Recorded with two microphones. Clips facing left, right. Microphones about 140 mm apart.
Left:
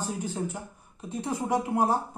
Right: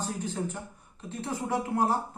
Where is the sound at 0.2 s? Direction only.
10° left (ahead or behind).